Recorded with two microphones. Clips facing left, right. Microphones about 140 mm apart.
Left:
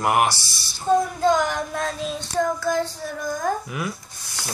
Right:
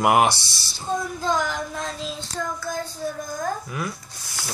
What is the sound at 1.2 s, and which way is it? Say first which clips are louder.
Child singing: left 5 dB; 60° left (ahead or behind).